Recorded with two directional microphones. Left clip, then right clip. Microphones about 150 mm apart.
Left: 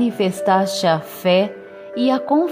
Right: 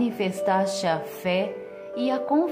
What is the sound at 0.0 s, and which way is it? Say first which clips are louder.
Speech: left 6 dB; 35° left (ahead or behind).